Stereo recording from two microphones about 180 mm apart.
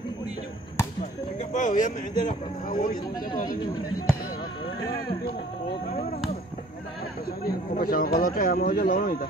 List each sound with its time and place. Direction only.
1.5 s speech: 45° left (ahead or behind)
7.4 s speech: 55° left (ahead or behind)